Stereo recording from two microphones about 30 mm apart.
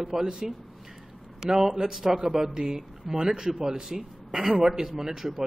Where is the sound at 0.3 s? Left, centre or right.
Centre.